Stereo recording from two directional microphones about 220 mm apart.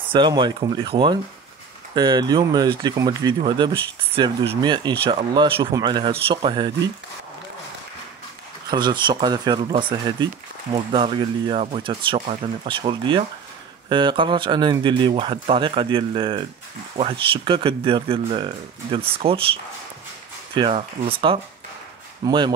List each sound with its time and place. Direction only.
0.1 s speech: 20° right (ahead or behind)
8.6 s speech: 20° right (ahead or behind)